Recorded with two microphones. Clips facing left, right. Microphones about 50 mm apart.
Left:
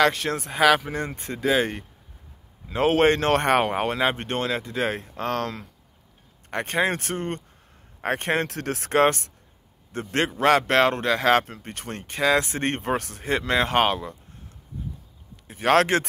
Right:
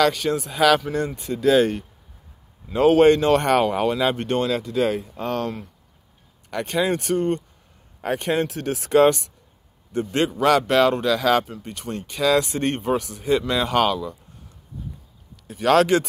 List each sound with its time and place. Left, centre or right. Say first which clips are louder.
0.0 s speech: right 1 dB; left
0.5 s speech: even; left
1.4 s speech: right 5 dB; left
2.7 s speech: right 5 dB; left
3.2 s speech: right 2 dB; left
5.1 s speech: right 1 dB; left
6.5 s speech: right 1 dB; left
8.3 s speech: right 4 dB; left
8.8 s speech: right 4 dB; left
10.3 s speech: right 1 dB; left
12.8 s speech: right 4 dB; left
15.4 s speech: right 2 dB; left